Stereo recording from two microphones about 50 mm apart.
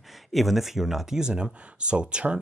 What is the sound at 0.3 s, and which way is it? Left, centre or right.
Speech, centre.